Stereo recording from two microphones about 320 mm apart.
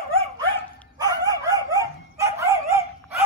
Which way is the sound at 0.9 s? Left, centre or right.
Centre.